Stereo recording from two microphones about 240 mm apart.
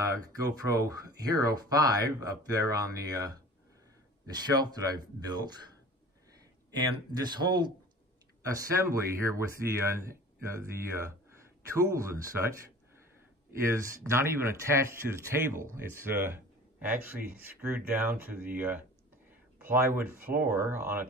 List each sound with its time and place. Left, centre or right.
0.0 s speech: centre
6.7 s speech: centre
13.5 s speech: centre